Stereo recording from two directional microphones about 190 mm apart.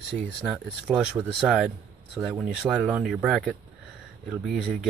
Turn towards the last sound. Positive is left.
turn(degrees=0)  # may be behind; listen again after turning